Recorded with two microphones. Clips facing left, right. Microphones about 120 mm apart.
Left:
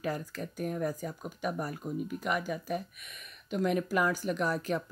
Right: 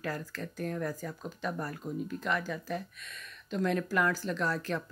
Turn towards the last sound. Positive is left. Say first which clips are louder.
# left 2 dB
turn(degrees=15)  # may be behind; listen again after turning